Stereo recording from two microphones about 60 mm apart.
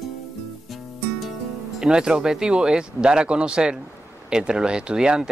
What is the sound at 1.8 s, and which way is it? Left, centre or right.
Speech, centre.